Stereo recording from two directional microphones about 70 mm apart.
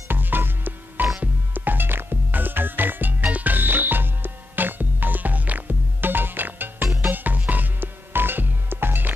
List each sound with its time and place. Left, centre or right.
0.1 s music: right